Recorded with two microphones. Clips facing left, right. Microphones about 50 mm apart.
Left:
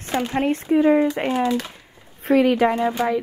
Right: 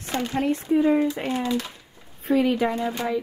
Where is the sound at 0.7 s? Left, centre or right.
Left.